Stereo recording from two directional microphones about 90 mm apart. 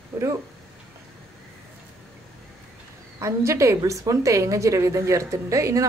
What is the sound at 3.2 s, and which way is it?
A woman's voice, 35° right (ahead or behind).